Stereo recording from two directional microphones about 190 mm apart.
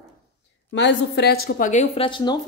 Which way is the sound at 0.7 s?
65° left (ahead or behind).